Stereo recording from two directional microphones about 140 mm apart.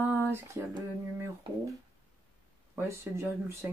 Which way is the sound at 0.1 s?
15° right (ahead or behind).